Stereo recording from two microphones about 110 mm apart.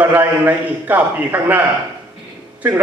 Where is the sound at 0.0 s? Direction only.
15° right (ahead or behind).